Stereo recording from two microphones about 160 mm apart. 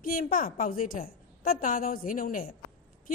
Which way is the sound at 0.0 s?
60° left (ahead or behind).